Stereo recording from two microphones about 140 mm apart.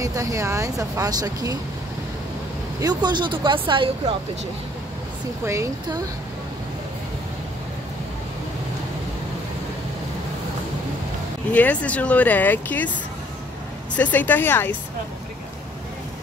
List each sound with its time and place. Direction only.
0.0 s speech: 25° right (ahead or behind)
2.8 s speech: 30° right (ahead or behind)
5.4 s speech: 20° right (ahead or behind)
11.5 s speech: 10° left (ahead or behind)
13.9 s speech: 10° left (ahead or behind)